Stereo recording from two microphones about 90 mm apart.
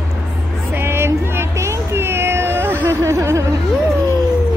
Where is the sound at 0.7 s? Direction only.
25° right (ahead or behind).